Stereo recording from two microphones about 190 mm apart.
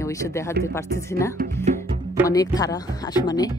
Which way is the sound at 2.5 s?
20° left (ahead or behind).